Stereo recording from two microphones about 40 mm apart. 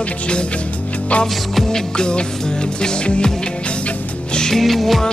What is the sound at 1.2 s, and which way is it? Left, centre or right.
Music, centre.